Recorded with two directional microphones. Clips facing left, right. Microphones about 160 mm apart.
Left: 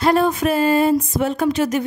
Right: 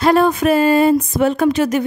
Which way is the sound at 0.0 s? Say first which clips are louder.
Right 3 dB; 80° right.